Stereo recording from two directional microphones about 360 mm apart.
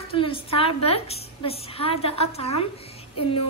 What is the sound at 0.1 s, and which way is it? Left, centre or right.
A woman's voice, centre.